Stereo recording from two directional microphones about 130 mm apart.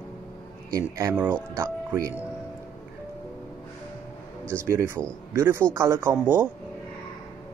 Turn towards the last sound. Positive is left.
turn(degrees=-15)  # may be behind; listen again after turning